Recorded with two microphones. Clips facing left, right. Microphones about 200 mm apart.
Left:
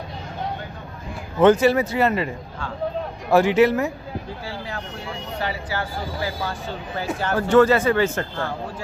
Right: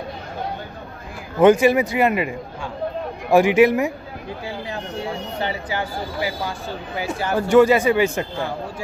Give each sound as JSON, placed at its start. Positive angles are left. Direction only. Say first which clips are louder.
{"t": 1.4, "sound": "speech", "louder": "right 2 dB", "side_deg": -15}